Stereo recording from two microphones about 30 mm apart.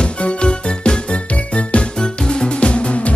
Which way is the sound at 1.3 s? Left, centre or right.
Left.